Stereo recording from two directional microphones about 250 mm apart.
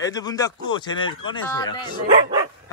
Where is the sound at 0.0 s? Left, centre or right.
Centre.